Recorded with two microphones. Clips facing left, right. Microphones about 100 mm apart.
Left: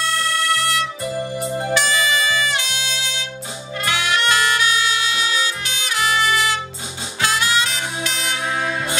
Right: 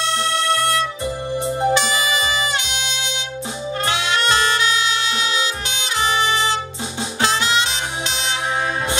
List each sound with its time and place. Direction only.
0.1 s music: 25° right (ahead or behind)